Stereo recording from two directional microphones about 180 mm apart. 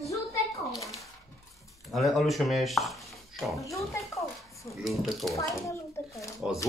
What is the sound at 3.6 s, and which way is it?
Speech, 15° left (ahead or behind).